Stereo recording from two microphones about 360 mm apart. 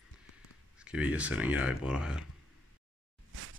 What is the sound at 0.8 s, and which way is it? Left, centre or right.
Speech, centre.